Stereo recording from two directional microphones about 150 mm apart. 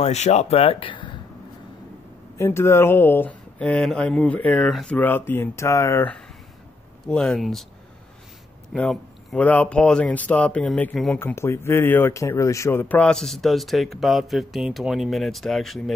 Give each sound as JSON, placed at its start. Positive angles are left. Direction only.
{"t": 0.0, "sound": "speech", "side_deg": 50}
{"t": 2.3, "sound": "speech", "side_deg": 15}
{"t": 8.7, "sound": "speech", "side_deg": 5}